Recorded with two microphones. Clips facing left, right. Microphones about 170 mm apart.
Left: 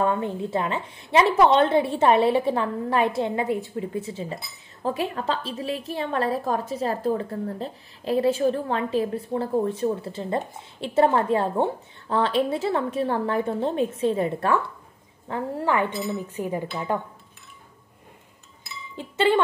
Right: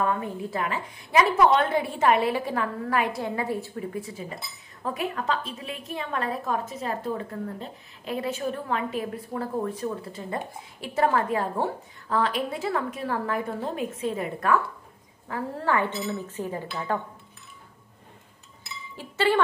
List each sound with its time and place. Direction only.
0.0 s a woman's voice: 25° left (ahead or behind)
18.9 s speech: 20° left (ahead or behind)